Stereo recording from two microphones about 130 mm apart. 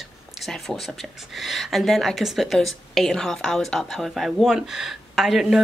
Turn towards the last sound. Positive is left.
turn(degrees=-5)  # may be behind; listen again after turning